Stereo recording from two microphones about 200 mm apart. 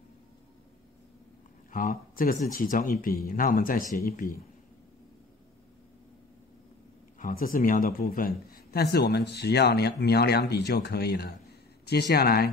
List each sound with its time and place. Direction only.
1.7 s speech: 40° left (ahead or behind)
7.2 s speech: 45° left (ahead or behind)